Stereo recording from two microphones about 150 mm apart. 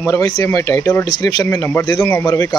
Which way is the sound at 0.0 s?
20° left (ahead or behind).